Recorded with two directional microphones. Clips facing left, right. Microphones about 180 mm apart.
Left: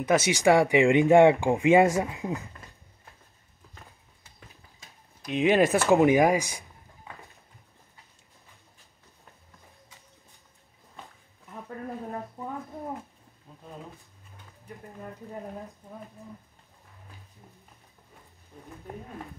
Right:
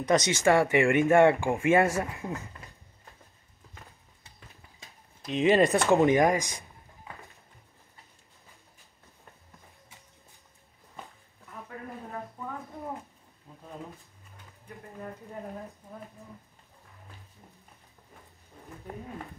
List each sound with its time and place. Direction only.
0.0 s speech: 5° left (ahead or behind)
5.2 s speech: centre (ahead or behind)